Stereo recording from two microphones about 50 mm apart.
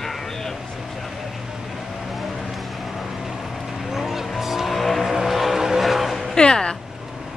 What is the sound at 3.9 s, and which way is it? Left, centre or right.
Vehicle, centre.